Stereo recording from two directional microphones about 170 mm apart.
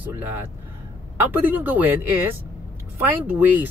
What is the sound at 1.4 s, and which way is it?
A man's voice, 10° right (ahead or behind).